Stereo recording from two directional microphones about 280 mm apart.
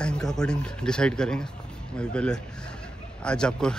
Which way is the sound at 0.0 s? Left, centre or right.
Centre.